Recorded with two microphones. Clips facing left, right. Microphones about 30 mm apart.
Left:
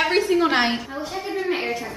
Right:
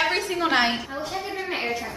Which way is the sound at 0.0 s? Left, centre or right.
Centre.